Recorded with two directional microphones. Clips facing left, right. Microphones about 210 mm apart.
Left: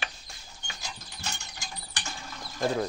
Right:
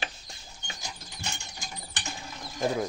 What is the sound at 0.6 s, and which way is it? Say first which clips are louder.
Rodents: even; 20° right (ahead or behind).